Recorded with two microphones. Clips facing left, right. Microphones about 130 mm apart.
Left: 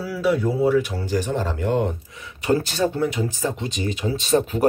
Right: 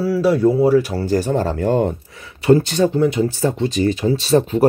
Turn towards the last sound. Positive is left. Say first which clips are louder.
# right 5 dB
turn(degrees=-30)  # may be behind; listen again after turning